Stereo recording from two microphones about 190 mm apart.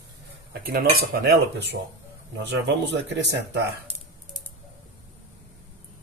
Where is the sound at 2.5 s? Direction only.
65° right (ahead or behind).